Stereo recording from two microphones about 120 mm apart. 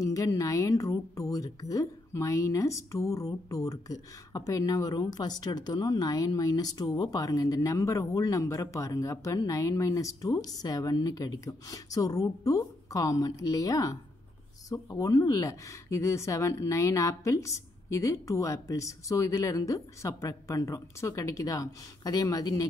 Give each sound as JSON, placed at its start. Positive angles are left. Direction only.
{"t": 0.0, "sound": "speech", "side_deg": 25}